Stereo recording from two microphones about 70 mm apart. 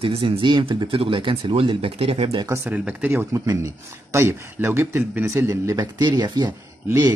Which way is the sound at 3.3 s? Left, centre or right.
Right.